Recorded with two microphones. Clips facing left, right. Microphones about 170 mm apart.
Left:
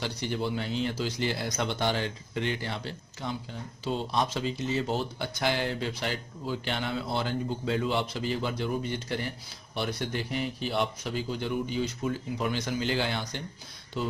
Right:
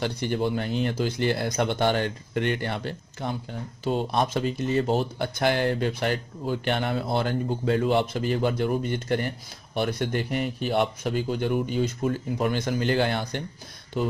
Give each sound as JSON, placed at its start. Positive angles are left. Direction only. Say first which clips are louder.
{"t": 0.0, "sound": "a man's voice", "louder": "right 5 dB", "side_deg": -55}